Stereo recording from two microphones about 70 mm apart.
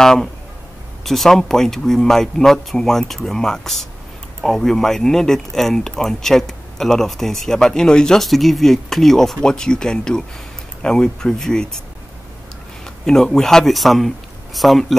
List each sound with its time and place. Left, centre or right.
0.0 s speech: centre
12.8 s speech: centre